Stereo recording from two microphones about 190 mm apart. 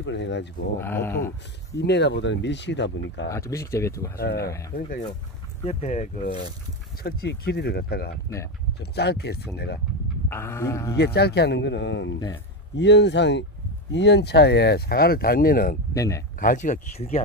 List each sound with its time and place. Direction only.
0.0 s speech: 65° left (ahead or behind)
0.7 s speech: 10° left (ahead or behind)
1.8 s speech: 65° left (ahead or behind)
3.3 s speech: 15° left (ahead or behind)
4.2 s speech: 55° left (ahead or behind)
4.5 s speech: 15° left (ahead or behind)
4.7 s speech: 50° left (ahead or behind)
5.7 s speech: 35° left (ahead or behind)
7.0 s speech: 55° left (ahead or behind)
10.3 s speech: 15° left (ahead or behind)
11.0 s speech: 60° left (ahead or behind)
15.9 s speech: 15° left (ahead or behind)
16.3 s speech: 45° left (ahead or behind)